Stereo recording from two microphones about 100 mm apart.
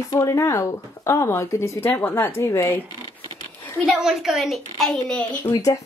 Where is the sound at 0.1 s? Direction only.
35° left (ahead or behind).